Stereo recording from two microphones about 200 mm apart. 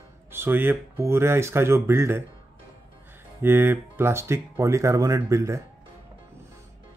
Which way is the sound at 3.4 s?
10° right (ahead or behind).